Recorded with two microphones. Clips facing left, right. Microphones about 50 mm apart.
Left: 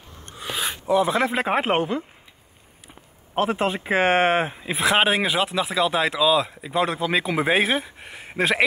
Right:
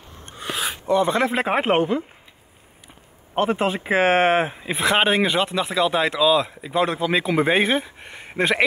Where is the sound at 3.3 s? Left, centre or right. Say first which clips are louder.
Right 1 dB; centre.